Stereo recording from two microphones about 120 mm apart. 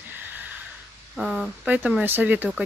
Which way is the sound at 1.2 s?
5° right (ahead or behind).